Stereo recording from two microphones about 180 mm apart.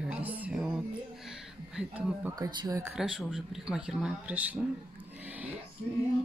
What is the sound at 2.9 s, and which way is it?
Speech, 5° right (ahead or behind).